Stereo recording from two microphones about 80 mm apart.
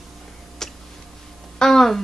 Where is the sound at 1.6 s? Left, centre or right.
Centre.